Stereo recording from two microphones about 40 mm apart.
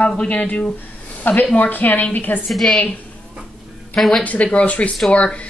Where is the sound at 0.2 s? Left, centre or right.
Left.